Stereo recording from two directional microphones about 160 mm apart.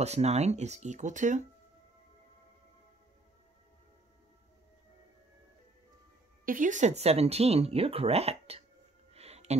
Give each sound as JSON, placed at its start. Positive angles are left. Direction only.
{"t": 0.0, "sound": "speech", "side_deg": -40}
{"t": 6.4, "sound": "speech", "side_deg": -55}
{"t": 9.1, "sound": "a sound", "side_deg": -40}